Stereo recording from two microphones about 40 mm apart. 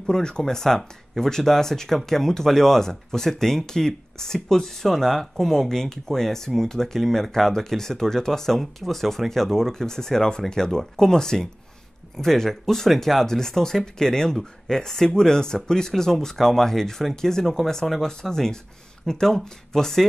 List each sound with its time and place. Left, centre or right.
0.0 s speech: centre